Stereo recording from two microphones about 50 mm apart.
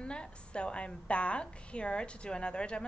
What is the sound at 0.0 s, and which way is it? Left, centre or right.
A woman's voice, left.